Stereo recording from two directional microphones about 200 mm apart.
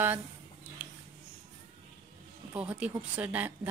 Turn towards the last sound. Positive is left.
turn(degrees=-10)  # may be behind; listen again after turning